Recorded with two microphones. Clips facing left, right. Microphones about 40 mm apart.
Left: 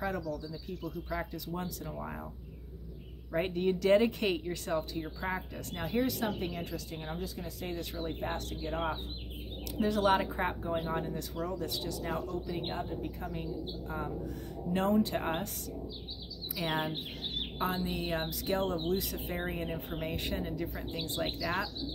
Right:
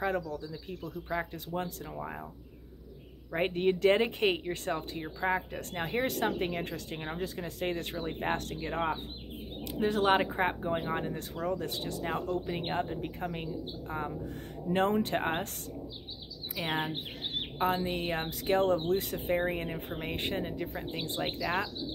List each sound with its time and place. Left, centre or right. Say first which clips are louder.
0.0 s speech: right 3 dB; right
1.9 s speech: right 1 dB; centre
3.3 s speech: right 2 dB; right
5.6 s speech: right 1 dB; right
8.7 s speech: right 3 dB; right
16.5 s speech: right 1 dB; right